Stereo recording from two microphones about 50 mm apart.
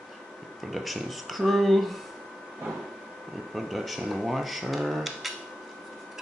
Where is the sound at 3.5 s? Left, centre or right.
Centre.